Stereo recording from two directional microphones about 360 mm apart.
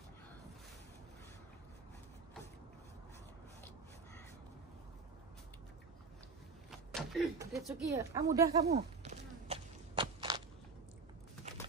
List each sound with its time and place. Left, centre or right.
6.7 s speech: centre
8.6 s walk: centre